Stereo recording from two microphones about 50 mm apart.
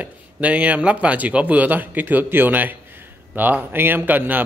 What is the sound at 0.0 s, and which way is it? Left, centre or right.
Speech, right.